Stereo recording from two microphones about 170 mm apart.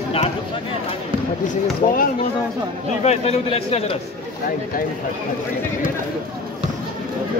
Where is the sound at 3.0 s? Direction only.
40° left (ahead or behind).